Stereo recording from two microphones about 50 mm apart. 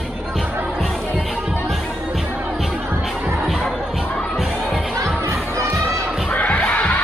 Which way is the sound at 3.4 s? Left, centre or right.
Centre.